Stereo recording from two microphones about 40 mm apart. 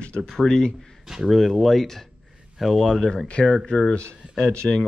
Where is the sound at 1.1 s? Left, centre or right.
Centre.